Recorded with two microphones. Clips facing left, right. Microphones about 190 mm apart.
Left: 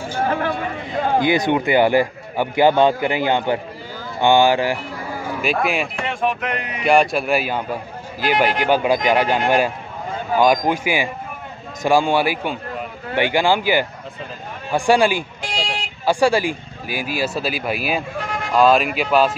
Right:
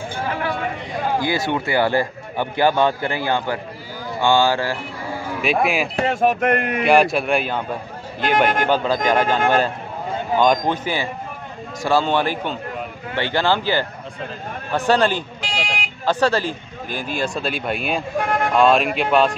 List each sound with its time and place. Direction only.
0.2 s a sound: 45° left (ahead or behind)
1.2 s a man's voice: 20° left (ahead or behind)
5.4 s speech: centre (ahead or behind)
5.9 s a sound: 40° right (ahead or behind)
6.8 s a man's voice: centre (ahead or behind)
10.4 s a man's voice: 10° left (ahead or behind)
18.2 s vehicle: 60° right (ahead or behind)
18.5 s speech: centre (ahead or behind)